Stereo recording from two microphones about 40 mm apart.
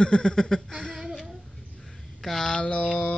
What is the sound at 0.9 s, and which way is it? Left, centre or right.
Child singing, centre.